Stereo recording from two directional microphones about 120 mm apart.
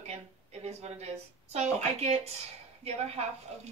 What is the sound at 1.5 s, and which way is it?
A woman's voice, 65° right (ahead or behind).